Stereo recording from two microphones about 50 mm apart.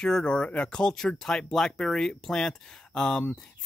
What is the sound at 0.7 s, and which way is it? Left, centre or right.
Speech, centre.